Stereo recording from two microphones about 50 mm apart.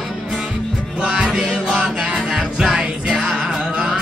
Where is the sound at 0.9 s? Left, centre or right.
Centre.